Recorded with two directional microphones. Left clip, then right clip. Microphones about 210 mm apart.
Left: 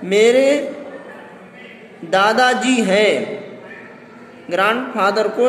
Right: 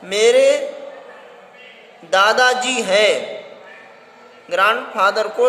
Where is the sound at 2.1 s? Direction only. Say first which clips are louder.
Even; 30° right (ahead or behind).